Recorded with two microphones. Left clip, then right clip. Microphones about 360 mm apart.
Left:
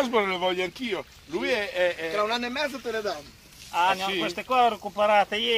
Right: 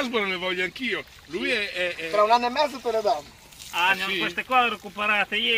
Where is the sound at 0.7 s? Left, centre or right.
Centre.